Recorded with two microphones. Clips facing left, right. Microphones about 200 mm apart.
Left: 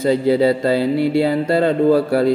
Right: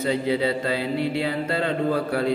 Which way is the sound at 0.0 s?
40° left (ahead or behind).